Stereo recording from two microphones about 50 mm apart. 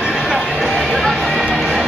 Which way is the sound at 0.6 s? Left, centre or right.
Centre.